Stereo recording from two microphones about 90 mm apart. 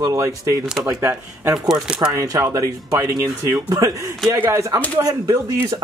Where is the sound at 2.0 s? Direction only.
40° right (ahead or behind).